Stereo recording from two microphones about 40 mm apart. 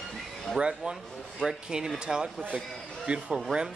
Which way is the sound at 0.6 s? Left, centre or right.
Right.